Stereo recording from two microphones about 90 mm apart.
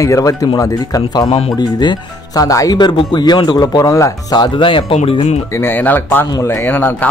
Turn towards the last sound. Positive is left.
turn(degrees=20)  # may be behind; listen again after turning